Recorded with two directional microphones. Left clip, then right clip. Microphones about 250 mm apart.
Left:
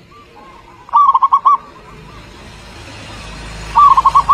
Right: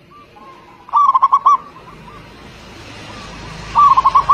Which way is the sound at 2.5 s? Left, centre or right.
Left.